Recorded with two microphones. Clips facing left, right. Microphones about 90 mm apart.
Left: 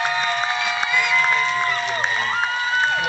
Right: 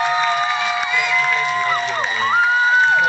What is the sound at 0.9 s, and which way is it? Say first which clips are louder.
Crowd: left 2 dB; 5° right (ahead or behind).